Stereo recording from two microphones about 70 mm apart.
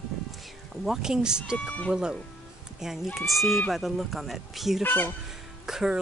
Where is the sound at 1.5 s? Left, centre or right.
Centre.